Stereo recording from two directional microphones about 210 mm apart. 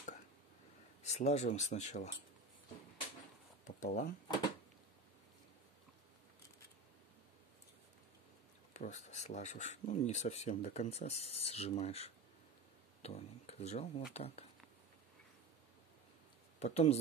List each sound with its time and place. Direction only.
1.0 s speech: 30° left (ahead or behind)
3.6 s a sound: 35° left (ahead or behind)
8.7 s speech: 35° left (ahead or behind)
16.5 s speech: 35° left (ahead or behind)